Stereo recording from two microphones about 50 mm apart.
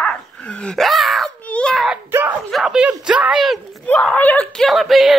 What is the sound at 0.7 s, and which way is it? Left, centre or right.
Speech, centre.